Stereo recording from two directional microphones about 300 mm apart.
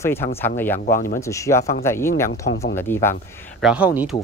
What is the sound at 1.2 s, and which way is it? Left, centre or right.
Speech, centre.